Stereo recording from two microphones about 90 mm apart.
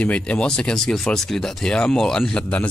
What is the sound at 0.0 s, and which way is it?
Speech, 10° left (ahead or behind).